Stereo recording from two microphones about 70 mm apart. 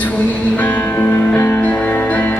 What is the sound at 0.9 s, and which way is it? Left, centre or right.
Music, left.